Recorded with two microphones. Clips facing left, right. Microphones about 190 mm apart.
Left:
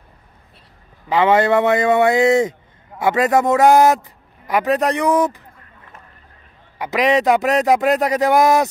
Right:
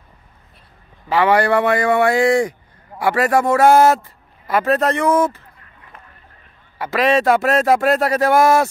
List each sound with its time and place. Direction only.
1.0 s a man's voice: 20° left (ahead or behind)
6.8 s a man's voice: 15° left (ahead or behind)